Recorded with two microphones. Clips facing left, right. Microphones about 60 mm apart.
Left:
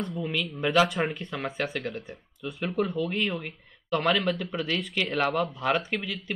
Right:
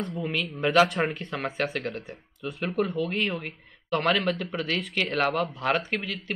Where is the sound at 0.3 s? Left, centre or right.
Right.